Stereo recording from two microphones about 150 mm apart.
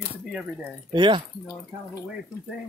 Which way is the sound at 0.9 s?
30° right (ahead or behind).